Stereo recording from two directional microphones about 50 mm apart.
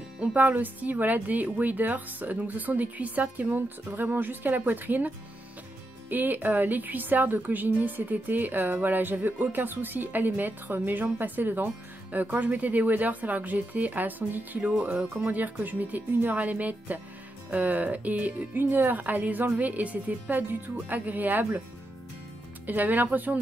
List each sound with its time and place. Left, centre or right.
0.2 s speech: right
22.7 s speech: right